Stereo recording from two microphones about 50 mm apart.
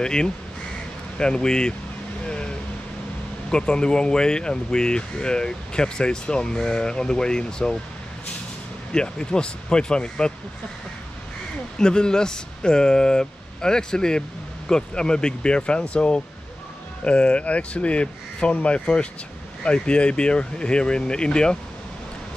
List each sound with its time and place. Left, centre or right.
0.0 s speech: centre
2.2 s vehicle: centre
3.4 s speech: centre
8.9 s speech: centre
11.8 s speech: centre